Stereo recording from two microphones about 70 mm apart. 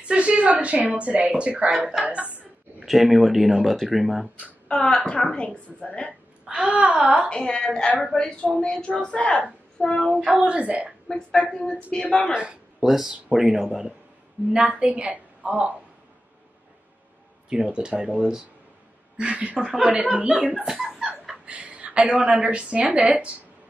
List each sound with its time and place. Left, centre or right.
0.1 s speech: centre
2.8 s speech: centre
4.6 s a woman's voice: centre
6.4 s a woman's voice: centre
7.2 s a woman's voice: centre
10.1 s a woman's voice: centre
11.1 s a woman's voice: centre
12.3 s a man's voice: centre
14.5 s a woman's voice: centre
17.5 s a woman's voice: centre
20.6 s a sound: centre
21.5 s a woman's voice: centre